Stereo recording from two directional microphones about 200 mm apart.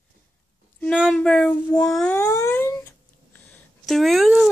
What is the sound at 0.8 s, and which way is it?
Speech, 5° left (ahead or behind).